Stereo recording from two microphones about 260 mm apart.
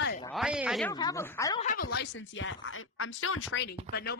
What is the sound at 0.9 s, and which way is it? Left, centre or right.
Speech, centre.